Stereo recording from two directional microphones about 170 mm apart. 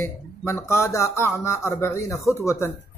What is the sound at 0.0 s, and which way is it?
Speech, 15° left (ahead or behind).